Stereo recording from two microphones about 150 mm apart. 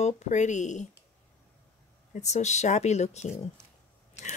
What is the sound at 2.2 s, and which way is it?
Speech, 50° left (ahead or behind).